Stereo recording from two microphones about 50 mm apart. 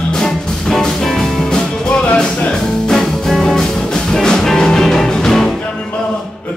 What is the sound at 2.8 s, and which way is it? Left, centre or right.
Music, centre.